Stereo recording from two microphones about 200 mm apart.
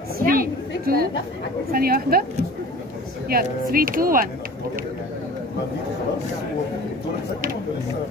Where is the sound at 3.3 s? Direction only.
45° right (ahead or behind).